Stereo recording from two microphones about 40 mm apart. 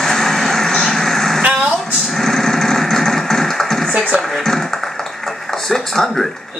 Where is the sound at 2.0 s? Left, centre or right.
Centre.